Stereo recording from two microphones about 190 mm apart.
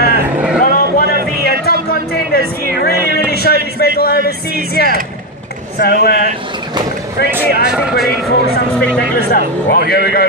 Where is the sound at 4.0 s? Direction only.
55° left (ahead or behind).